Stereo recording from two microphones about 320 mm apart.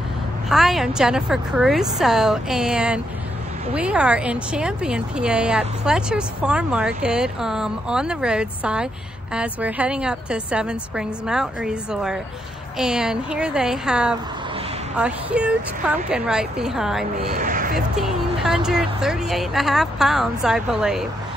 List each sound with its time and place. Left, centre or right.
0.5 s a woman's voice: centre
17.4 s speech: right
17.7 s a woman's voice: centre